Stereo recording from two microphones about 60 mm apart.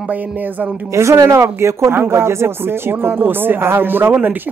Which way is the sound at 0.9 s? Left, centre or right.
Right.